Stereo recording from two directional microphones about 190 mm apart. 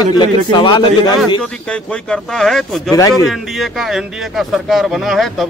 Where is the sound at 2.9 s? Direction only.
20° left (ahead or behind).